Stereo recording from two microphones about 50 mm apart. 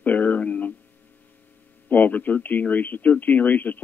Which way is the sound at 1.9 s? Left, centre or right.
Left.